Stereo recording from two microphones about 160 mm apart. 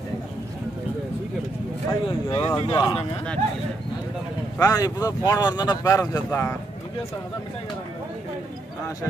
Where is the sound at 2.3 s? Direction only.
30° left (ahead or behind).